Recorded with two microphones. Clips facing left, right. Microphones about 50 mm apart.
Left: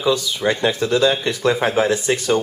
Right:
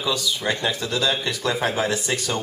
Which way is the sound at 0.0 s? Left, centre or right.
Left.